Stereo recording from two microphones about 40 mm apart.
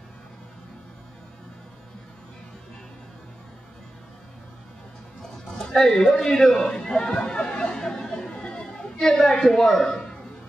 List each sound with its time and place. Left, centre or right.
5.2 s speech: centre
7.8 s chatter: centre
9.2 s speech: centre